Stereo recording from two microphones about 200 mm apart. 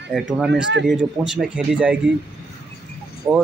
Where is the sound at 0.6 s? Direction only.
60° right (ahead or behind).